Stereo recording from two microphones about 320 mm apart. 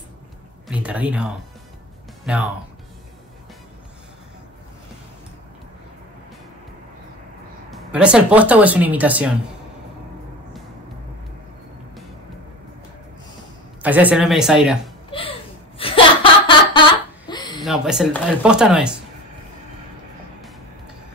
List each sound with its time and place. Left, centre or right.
0.7 s speech: centre
7.7 s speech: centre
13.8 s speech: centre
15.0 s a sound: centre
15.8 s laughter: centre
17.3 s a sound: centre
17.6 s speech: centre